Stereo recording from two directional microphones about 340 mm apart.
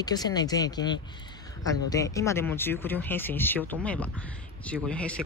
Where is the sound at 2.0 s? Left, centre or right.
Centre.